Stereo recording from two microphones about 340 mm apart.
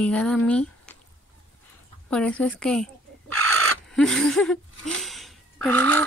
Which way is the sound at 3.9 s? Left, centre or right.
Centre.